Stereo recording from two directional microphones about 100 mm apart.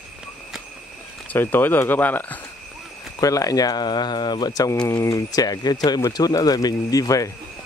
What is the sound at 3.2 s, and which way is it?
Speech, 35° left (ahead or behind).